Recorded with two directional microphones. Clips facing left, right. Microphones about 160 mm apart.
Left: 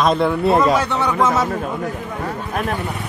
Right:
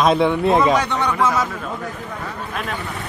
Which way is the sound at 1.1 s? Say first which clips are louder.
Left 3 dB; 25° left (ahead or behind).